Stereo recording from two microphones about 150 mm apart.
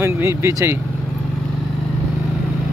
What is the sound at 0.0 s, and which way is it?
Speech, 20° right (ahead or behind).